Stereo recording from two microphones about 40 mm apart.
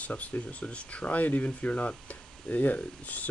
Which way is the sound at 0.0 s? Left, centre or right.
Left.